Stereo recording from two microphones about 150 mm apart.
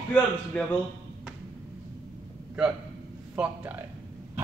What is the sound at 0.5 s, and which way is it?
Speech, 10° left (ahead or behind).